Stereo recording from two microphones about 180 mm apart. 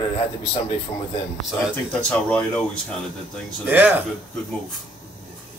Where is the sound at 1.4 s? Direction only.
Centre (ahead or behind).